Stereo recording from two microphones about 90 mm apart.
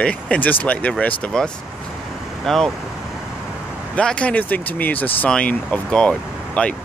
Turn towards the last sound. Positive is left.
turn(degrees=10)  # may be behind; listen again after turning